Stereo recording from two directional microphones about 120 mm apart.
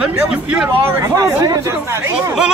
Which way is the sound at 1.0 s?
25° right (ahead or behind).